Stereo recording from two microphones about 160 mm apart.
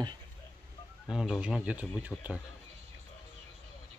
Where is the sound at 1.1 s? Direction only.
5° right (ahead or behind).